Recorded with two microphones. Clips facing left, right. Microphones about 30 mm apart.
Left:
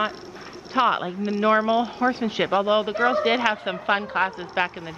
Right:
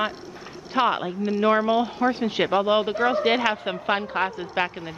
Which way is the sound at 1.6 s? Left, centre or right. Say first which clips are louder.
Even; left.